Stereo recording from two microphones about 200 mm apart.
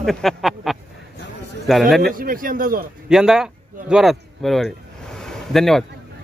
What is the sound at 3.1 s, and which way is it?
Speech, centre (ahead or behind).